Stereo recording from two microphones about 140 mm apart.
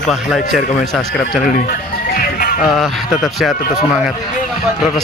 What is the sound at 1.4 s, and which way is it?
Music, 75° left (ahead or behind).